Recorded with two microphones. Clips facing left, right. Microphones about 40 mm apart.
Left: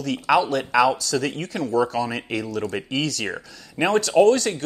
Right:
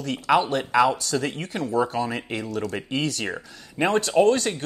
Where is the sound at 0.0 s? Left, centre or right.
Centre.